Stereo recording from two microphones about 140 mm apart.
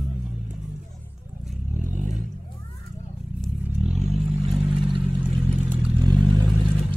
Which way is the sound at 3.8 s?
50° right (ahead or behind).